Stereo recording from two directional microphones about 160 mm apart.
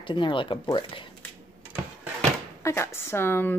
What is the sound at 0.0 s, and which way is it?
Speech, 30° left (ahead or behind).